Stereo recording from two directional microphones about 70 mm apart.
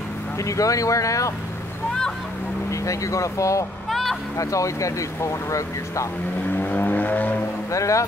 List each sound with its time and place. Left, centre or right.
0.4 s speech: left
2.7 s speech: left
3.9 s a sound: centre
4.4 s speech: left
6.6 s vehicle: left
7.7 s speech: left